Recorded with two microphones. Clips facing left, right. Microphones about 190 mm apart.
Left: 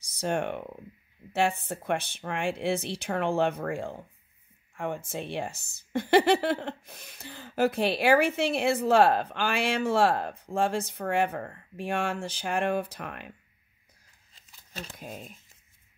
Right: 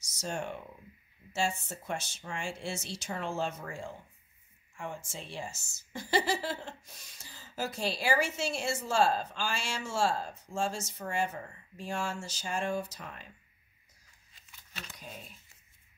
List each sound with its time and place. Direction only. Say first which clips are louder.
0.0 s speech: left 8 dB; 60° left (ahead or behind)
14.5 s a sound: left 7 dB; 35° left (ahead or behind)
15.0 s speech: left 6 dB; 45° left (ahead or behind)